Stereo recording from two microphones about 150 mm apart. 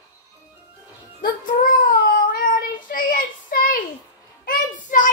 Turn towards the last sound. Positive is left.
turn(degrees=60)  # may be behind; listen again after turning